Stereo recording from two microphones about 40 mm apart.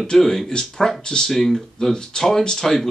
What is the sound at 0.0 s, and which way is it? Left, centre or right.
Speech, centre.